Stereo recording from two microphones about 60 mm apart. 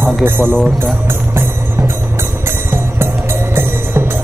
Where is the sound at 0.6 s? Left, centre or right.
Right.